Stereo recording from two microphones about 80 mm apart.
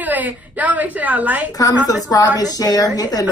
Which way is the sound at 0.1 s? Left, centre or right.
Centre.